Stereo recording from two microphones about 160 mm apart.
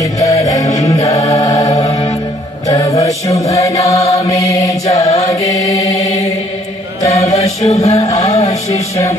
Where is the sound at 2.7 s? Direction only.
20° left (ahead or behind).